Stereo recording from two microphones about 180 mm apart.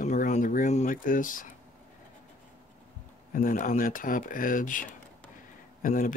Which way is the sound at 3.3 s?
50° left (ahead or behind).